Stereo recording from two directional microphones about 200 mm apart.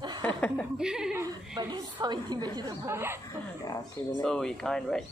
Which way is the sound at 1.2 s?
20° right (ahead or behind).